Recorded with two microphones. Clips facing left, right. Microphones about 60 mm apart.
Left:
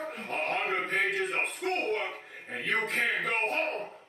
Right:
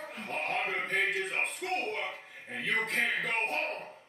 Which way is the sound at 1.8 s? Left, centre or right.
Left.